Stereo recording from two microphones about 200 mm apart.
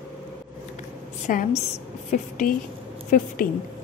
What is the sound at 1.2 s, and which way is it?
A woman's voice, 40° left (ahead or behind).